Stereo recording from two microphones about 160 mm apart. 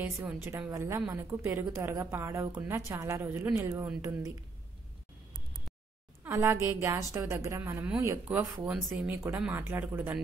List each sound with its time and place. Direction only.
0.0 s a woman's voice: 15° right (ahead or behind)
6.2 s a woman's voice: 20° right (ahead or behind)